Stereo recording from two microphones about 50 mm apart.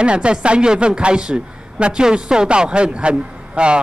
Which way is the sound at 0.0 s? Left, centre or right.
Centre.